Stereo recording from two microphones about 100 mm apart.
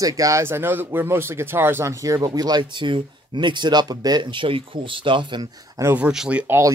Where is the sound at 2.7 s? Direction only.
55° right (ahead or behind); by 6.0 s 30° right (ahead or behind).